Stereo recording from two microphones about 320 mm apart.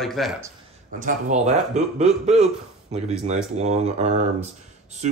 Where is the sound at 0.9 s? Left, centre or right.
Right.